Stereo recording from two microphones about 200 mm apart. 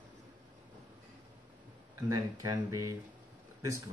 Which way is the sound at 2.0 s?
15° right (ahead or behind).